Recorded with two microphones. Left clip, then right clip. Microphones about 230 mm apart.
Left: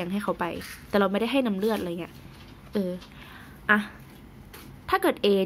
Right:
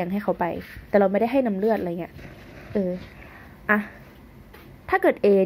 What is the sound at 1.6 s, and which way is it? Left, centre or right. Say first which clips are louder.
Speech: right 4 dB; centre.